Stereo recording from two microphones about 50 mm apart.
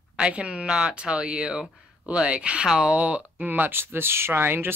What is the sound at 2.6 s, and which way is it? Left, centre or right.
Speech, centre.